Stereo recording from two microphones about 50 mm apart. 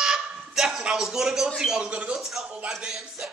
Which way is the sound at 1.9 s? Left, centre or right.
Right.